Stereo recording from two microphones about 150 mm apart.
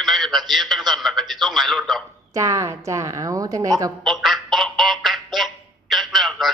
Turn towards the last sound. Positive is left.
turn(degrees=0)  # may be behind; listen again after turning